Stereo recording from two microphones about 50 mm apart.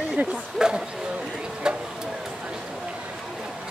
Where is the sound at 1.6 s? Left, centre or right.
Centre.